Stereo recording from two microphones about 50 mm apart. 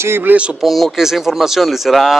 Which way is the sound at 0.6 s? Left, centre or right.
Centre.